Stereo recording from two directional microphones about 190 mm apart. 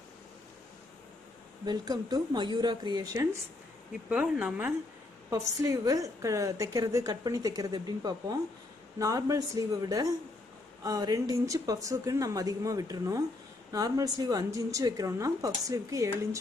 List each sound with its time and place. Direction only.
1.7 s a woman's voice: 20° right (ahead or behind)
4.1 s a woman's voice: 5° right (ahead or behind)